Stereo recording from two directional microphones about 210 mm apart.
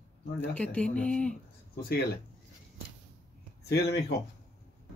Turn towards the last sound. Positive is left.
turn(degrees=50)  # may be behind; listen again after turning